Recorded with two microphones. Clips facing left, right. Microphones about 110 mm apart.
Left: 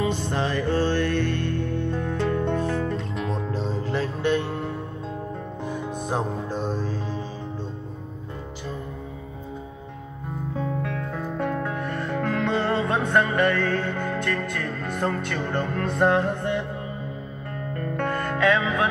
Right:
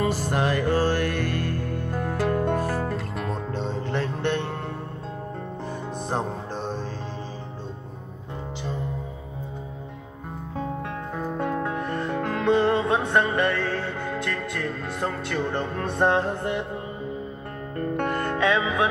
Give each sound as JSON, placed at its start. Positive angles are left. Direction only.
{"t": 0.0, "sound": "music", "side_deg": -5}
{"t": 10.6, "sound": "music", "side_deg": -35}
{"t": 11.1, "sound": "music", "side_deg": -20}
{"t": 17.7, "sound": "music", "side_deg": -25}